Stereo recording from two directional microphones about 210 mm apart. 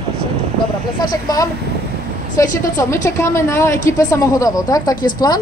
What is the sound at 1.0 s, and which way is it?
A woman's voice, 15° left (ahead or behind).